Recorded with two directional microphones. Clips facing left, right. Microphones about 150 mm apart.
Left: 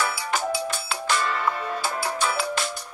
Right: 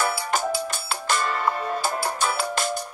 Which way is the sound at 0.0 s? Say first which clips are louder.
Right 2 dB; 45° right (ahead or behind).